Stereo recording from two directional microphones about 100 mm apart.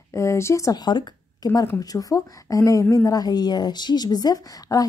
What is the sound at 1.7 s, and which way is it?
Speech, 35° left (ahead or behind).